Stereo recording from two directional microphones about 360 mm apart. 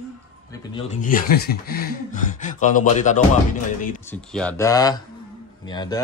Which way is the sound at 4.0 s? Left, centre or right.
Centre.